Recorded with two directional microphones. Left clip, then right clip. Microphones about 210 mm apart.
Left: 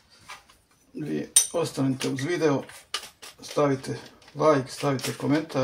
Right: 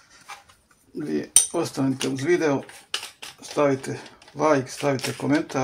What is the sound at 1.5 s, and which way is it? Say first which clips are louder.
Cutlery: right 1 dB; 40° right (ahead or behind).